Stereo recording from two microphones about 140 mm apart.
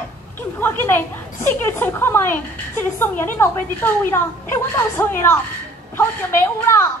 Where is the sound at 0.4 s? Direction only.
15° left (ahead or behind).